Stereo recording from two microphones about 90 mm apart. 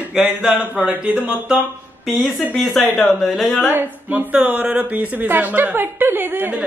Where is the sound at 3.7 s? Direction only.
20° right (ahead or behind).